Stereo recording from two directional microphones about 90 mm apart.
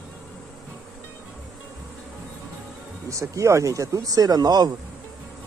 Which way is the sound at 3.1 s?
35° right (ahead or behind).